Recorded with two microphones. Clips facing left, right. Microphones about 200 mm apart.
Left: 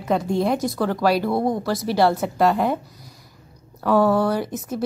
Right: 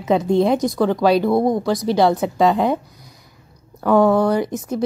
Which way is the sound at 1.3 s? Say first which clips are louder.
Right 4 dB; 15° right (ahead or behind).